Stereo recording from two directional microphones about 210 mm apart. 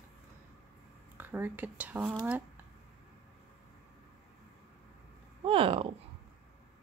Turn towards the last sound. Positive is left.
turn(degrees=-25)  # may be behind; listen again after turning